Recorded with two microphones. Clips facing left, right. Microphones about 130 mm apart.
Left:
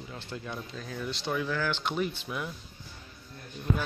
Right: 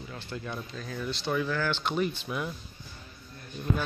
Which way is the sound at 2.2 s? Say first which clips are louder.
Right 2 dB; 5° right (ahead or behind).